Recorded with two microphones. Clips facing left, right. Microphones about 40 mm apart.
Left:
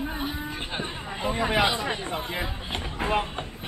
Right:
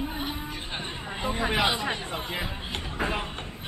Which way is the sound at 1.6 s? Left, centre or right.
Centre.